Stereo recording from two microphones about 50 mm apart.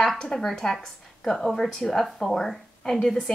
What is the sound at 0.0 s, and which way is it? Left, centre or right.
A woman's voice, centre.